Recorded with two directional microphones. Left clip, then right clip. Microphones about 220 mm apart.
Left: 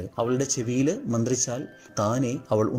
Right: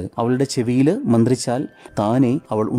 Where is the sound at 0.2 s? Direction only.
20° right (ahead or behind).